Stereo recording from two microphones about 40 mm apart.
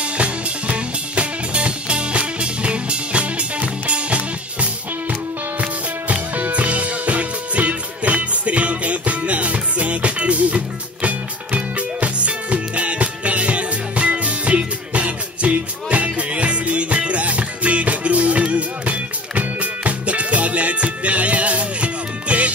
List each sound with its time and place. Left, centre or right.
0.0 s music: right